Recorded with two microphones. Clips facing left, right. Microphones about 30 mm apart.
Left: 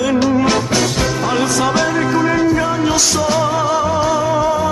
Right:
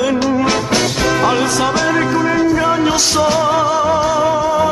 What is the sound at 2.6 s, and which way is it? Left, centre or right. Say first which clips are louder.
Music: right 2 dB; centre.